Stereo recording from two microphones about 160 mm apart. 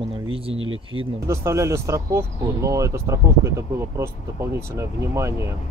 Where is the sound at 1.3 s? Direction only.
20° right (ahead or behind).